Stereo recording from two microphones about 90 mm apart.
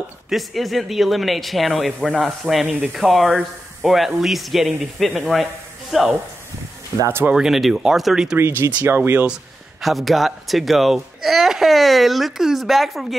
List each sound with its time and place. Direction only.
0.3 s a man's voice: centre (ahead or behind)
7.1 s speech: 25° right (ahead or behind)
7.3 s a man's voice: 5° right (ahead or behind)
8.4 s speech: 25° right (ahead or behind)
9.2 s a man's voice: 5° right (ahead or behind)